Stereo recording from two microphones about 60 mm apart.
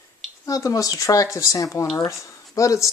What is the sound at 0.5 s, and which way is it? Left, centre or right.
Speech, left.